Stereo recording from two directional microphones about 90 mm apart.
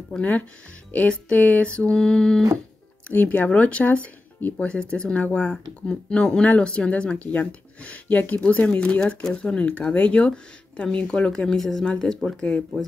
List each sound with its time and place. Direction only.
0.1 s speech: 15° left (ahead or behind)